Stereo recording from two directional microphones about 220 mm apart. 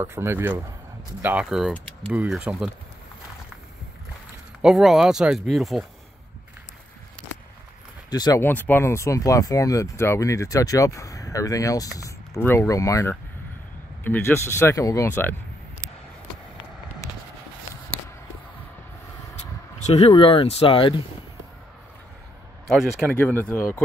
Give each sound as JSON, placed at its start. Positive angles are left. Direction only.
{"t": 0.0, "sound": "a man's voice", "side_deg": -10}
{"t": 4.6, "sound": "speech", "side_deg": 0}
{"t": 8.1, "sound": "speech", "side_deg": 15}
{"t": 19.9, "sound": "speech", "side_deg": 25}
{"t": 22.7, "sound": "speech", "side_deg": 0}
{"t": 23.1, "sound": "speech", "side_deg": 10}